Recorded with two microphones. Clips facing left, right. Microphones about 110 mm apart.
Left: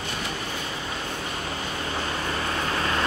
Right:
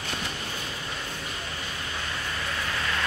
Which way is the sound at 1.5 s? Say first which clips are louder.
Left 5 dB; 45° left (ahead or behind).